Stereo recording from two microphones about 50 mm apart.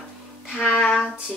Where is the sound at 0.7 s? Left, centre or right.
Left.